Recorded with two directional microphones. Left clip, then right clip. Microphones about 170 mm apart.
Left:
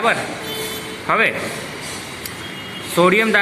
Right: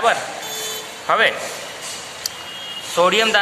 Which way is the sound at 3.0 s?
10° right (ahead or behind).